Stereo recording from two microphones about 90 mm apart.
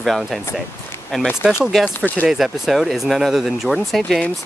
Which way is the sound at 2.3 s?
5° right (ahead or behind).